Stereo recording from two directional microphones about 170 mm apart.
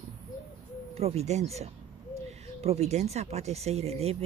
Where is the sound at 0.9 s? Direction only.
35° right (ahead or behind).